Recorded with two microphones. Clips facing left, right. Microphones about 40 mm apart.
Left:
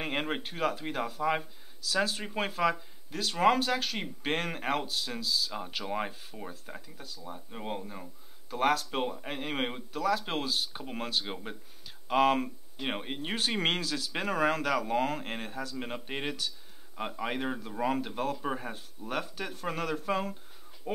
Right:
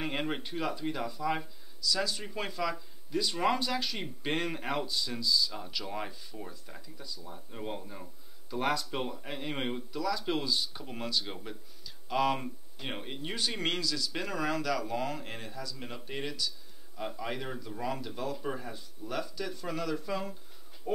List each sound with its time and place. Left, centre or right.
0.0 s a sound: left
0.5 s speech: left
8.5 s speech: left
8.9 s speech: left
9.9 s speech: left
11.8 s a sound: left
12.8 s speech: left
20.9 s speech: centre